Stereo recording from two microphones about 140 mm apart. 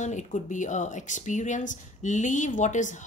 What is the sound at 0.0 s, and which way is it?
Speech, 60° left (ahead or behind).